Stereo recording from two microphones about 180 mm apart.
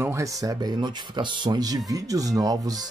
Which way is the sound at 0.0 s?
15° right (ahead or behind).